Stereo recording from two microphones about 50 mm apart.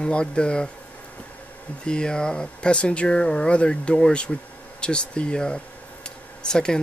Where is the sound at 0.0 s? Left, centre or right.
Centre.